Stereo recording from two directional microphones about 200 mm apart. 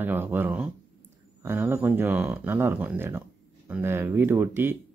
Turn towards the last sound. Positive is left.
turn(degrees=-10)  # may be behind; listen again after turning